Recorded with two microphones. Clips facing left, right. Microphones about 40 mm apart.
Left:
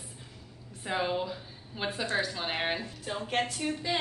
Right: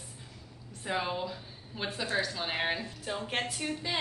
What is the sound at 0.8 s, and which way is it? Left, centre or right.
A woman's voice, centre.